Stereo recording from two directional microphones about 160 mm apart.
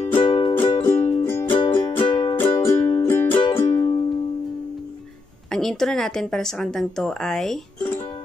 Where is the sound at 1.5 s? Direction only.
30° left (ahead or behind).